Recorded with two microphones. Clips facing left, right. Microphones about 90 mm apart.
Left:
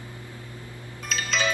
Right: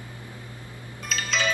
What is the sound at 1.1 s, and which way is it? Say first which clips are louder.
Music: left 1 dB; centre (ahead or behind).